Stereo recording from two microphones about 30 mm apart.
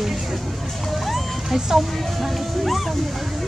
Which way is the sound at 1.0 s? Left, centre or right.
Centre.